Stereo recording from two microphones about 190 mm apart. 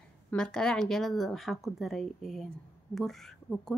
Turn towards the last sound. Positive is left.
turn(degrees=0)  # may be behind; listen again after turning